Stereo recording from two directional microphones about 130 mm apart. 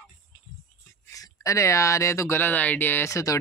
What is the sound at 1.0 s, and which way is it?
Speech, 25° left (ahead or behind).